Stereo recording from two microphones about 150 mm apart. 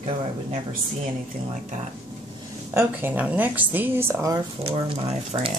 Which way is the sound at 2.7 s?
15° right (ahead or behind).